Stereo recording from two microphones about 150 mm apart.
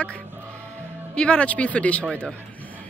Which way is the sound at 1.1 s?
10° left (ahead or behind).